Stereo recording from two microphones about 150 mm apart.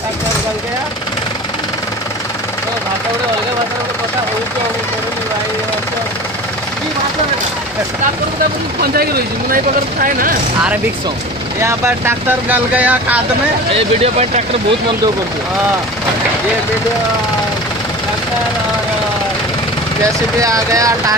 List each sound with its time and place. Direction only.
8.9 s speech: 90° right
11.6 s speech: 15° right (ahead or behind)
14.0 s speech: 45° right (ahead or behind)
20.3 s speech: 20° right (ahead or behind)